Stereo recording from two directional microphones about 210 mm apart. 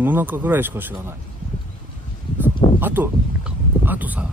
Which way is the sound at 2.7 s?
10° right (ahead or behind).